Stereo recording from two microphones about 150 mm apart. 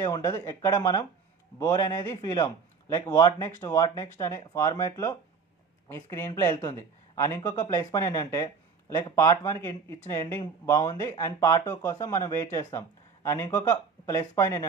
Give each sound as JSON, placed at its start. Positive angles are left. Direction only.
{"t": 0.0, "sound": "speech", "side_deg": 25}